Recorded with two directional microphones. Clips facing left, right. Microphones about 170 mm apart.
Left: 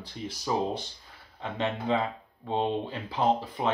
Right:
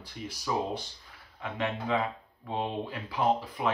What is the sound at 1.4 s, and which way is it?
Speech, 30° left (ahead or behind).